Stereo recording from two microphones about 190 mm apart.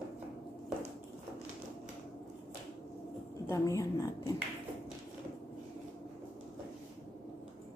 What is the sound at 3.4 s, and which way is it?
Speech, 15° left (ahead or behind).